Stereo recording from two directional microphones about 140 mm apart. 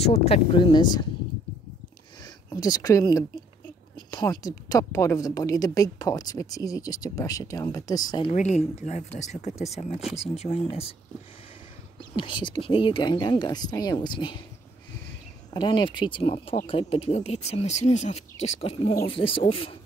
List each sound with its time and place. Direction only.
0.0 s speech: 50° left (ahead or behind); by 1.0 s 30° left (ahead or behind)
2.2 s speech: 25° left (ahead or behind)
3.9 s a sound: 25° left (ahead or behind)
4.4 s a woman's voice: 25° left (ahead or behind)
8.3 s speech: 55° left (ahead or behind)
9.9 s speech: 5° right (ahead or behind)
10.2 s speech: 50° left (ahead or behind)
12.2 s speech: 35° left (ahead or behind)
15.5 s speech: 35° left (ahead or behind)